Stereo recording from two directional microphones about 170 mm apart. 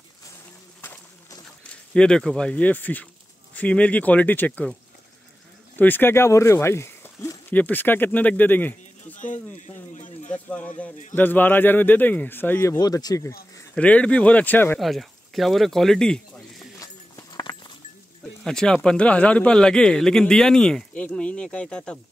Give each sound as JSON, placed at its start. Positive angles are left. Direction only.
{"t": 0.7, "sound": "a sound", "side_deg": 10}
{"t": 3.5, "sound": "speech", "side_deg": 5}
{"t": 5.8, "sound": "speech", "side_deg": 10}
{"t": 9.1, "sound": "a sound", "side_deg": 45}
{"t": 10.3, "sound": "speech", "side_deg": 10}
{"t": 13.7, "sound": "speech", "side_deg": 5}
{"t": 14.8, "sound": "speech", "side_deg": 0}
{"t": 16.8, "sound": "a sound", "side_deg": 20}
{"t": 18.4, "sound": "speech", "side_deg": 5}